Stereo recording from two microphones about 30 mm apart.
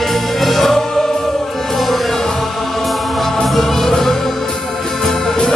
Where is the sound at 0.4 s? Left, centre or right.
Centre.